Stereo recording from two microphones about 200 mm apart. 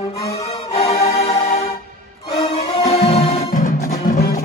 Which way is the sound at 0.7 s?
30° left (ahead or behind).